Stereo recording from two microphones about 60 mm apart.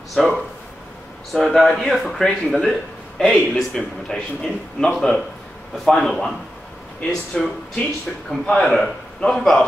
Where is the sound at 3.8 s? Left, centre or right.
Centre.